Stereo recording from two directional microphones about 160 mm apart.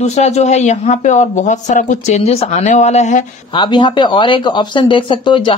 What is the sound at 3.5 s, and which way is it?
Speech, 30° left (ahead or behind).